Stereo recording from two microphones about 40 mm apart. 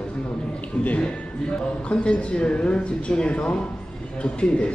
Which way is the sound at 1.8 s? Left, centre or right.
Left.